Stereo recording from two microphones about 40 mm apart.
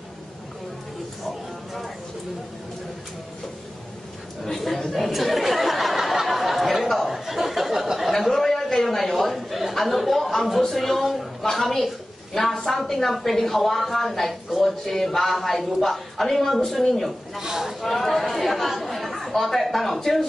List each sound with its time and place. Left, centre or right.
4.5 s a sound: centre
8.1 s chatter: centre
11.4 s a woman's voice: centre
17.4 s speech: centre
17.8 s speech: centre